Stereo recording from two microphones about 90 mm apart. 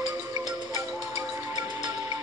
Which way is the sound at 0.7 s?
25° right (ahead or behind).